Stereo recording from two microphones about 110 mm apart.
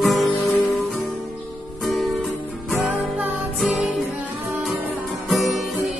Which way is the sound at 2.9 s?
15° right (ahead or behind).